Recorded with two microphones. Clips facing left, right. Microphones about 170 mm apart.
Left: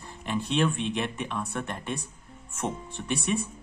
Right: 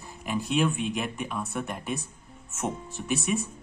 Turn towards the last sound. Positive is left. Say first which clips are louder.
# right 1 dB
turn(degrees=-5)  # may be behind; listen again after turning